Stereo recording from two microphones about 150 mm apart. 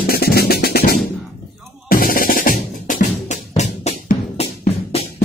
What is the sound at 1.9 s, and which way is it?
Music, 75° left (ahead or behind).